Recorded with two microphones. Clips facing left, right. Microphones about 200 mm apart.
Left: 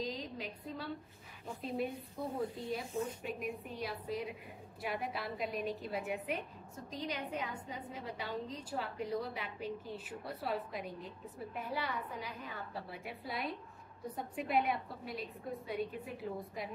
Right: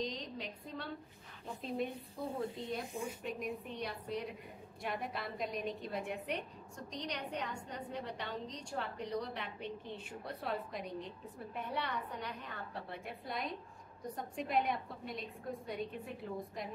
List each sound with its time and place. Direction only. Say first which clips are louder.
0.0 s a woman's voice: even; 5° left (ahead or behind)
2.2 s a woman's voice: left 1 dB; 25° right (ahead or behind)
2.9 s a woman's voice: left 3 dB; 10° right (ahead or behind)
3.3 s a woman's voice: even; 5° left (ahead or behind)